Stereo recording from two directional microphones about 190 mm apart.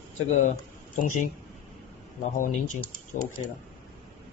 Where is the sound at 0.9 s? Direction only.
45° left (ahead or behind).